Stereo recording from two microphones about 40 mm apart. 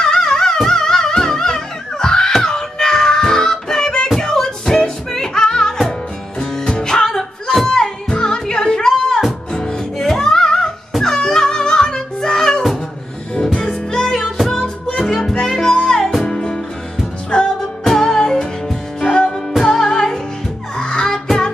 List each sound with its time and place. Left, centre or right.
0.0 s music: centre
14.6 s music: centre
17.8 s music: centre